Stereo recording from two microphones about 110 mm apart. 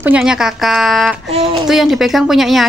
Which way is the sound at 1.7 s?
5° right (ahead or behind).